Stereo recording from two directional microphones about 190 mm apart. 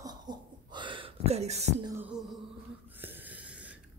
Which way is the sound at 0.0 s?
20° right (ahead or behind).